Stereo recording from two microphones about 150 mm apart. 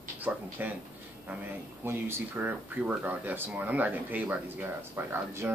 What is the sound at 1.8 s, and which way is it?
Speech, 15° right (ahead or behind).